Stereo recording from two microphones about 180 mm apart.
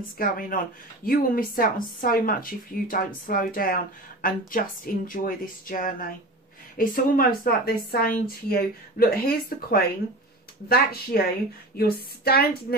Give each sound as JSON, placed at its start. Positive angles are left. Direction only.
{"t": 0.2, "sound": "a woman's voice", "side_deg": 50}